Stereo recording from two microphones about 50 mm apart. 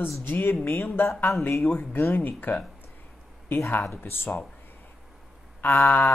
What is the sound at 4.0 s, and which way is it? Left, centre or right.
Speech, left.